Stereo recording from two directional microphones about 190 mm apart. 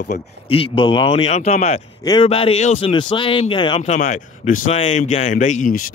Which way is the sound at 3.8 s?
40° left (ahead or behind).